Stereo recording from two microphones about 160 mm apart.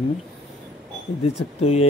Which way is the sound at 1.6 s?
40° left (ahead or behind).